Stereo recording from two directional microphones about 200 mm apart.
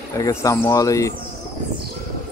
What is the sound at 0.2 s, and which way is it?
Speech, 15° left (ahead or behind).